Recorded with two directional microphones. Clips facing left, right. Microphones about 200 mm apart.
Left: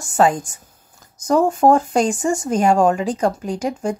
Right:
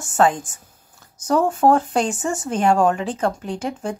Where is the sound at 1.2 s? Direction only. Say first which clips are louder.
Left 2 dB; 10° left (ahead or behind).